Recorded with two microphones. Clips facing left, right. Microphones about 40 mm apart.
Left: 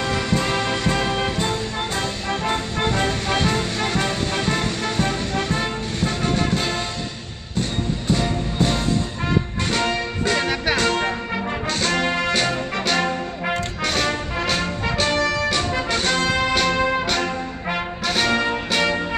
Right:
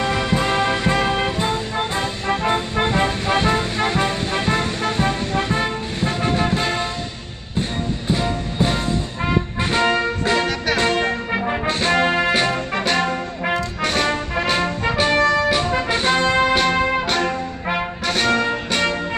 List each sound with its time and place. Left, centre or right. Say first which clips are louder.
0.0 s music: right 2 dB; centre
8.1 s music: even; centre
11.4 s music: right 3 dB; right
13.8 s brass instrument: right 2 dB; centre